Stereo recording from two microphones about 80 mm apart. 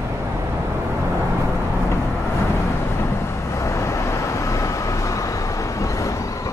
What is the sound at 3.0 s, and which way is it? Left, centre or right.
Vehicle, left.